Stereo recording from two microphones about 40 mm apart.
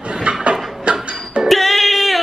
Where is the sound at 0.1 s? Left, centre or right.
Right.